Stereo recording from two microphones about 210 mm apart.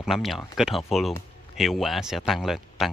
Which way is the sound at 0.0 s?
Centre (ahead or behind).